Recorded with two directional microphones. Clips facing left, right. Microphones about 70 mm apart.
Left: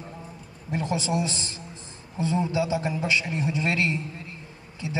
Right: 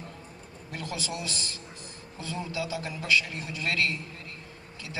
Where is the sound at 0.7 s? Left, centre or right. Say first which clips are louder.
Left 9 dB; left.